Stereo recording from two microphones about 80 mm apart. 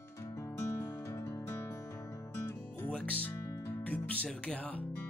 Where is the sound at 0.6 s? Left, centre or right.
Left.